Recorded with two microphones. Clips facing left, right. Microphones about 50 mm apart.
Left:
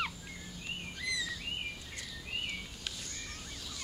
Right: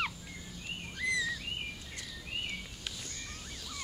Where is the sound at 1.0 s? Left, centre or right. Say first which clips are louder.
Right 5 dB; right.